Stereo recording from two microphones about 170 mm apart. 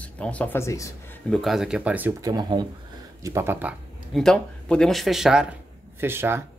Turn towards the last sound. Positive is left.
turn(degrees=-15)  # may be behind; listen again after turning